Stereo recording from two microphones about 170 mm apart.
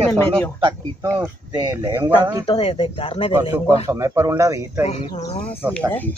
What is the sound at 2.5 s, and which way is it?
Speech, 35° left (ahead or behind).